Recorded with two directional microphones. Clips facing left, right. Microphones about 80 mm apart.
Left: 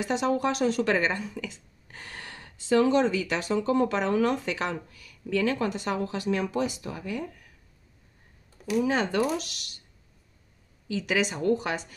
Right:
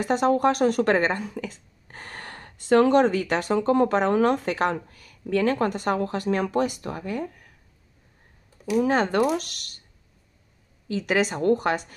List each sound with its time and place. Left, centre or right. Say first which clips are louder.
0.0 s speech: right 5 dB; right
8.7 s speech: right 4 dB; right
10.9 s speech: right 4 dB; right